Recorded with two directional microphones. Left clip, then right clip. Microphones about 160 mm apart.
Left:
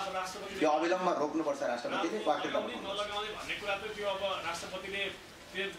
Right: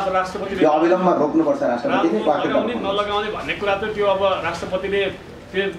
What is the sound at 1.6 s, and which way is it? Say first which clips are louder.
A man's voice: right 15 dB; 5° left (ahead or behind).